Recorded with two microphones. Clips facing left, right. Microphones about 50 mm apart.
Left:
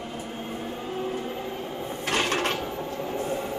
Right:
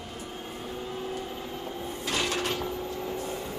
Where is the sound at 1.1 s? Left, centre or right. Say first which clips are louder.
Left 4 dB; left.